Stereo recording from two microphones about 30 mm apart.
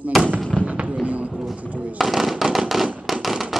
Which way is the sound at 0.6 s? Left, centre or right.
Right.